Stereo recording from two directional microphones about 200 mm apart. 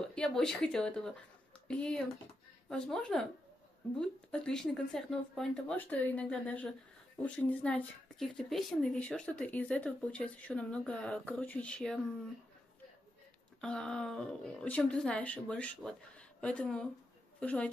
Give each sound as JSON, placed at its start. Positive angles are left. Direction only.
{"t": 0.0, "sound": "speech", "side_deg": 5}
{"t": 13.6, "sound": "a woman's voice", "side_deg": 5}